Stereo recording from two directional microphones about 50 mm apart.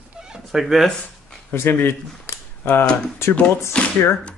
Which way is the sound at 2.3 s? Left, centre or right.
Left.